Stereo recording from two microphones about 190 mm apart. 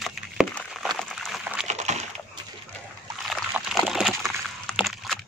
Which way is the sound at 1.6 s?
35° right (ahead or behind).